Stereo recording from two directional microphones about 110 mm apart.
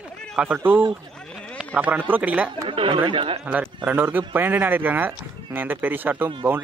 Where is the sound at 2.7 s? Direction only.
50° right (ahead or behind).